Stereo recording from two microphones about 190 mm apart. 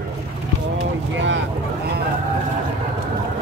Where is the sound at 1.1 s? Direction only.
75° right (ahead or behind).